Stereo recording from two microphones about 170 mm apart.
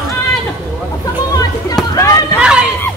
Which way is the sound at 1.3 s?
20° left (ahead or behind).